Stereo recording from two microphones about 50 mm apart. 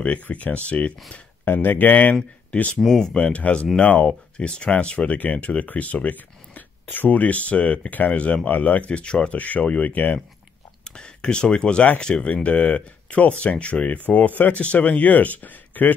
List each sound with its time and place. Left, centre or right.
0.0 s speech: left
1.4 s speech: left
2.8 s speech: centre
3.2 s speech: left
10.8 s speech: centre; by 15.9 s left